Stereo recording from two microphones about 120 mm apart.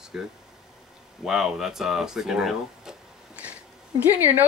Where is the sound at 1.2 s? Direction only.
5° right (ahead or behind).